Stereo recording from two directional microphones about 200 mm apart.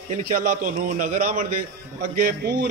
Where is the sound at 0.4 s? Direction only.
45° right (ahead or behind).